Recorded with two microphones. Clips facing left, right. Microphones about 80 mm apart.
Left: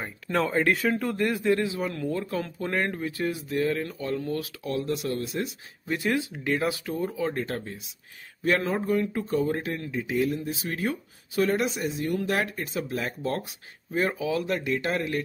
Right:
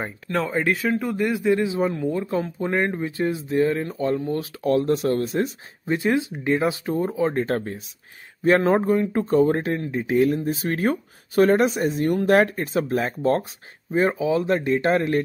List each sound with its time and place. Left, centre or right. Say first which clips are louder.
0.3 s speech: right 1 dB; centre; by 4.5 s right
4.6 s speech: right 9 dB; right
5.9 s speech: right 5 dB; right
8.4 s speech: right 7 dB; right
9.1 s speech: right 8 dB; right
13.9 s speech: right 6 dB; right